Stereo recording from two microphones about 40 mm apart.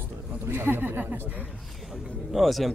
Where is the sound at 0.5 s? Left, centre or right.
Right.